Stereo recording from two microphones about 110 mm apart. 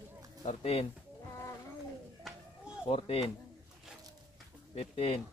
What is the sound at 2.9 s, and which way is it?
Speech, 60° left (ahead or behind).